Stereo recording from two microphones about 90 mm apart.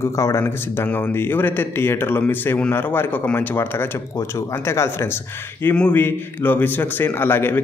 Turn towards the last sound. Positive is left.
turn(degrees=25)  # may be behind; listen again after turning